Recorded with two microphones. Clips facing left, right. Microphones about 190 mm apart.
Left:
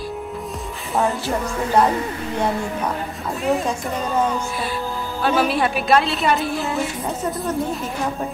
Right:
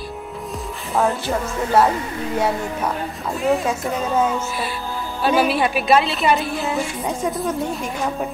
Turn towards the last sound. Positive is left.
turn(degrees=0)  # may be behind; listen again after turning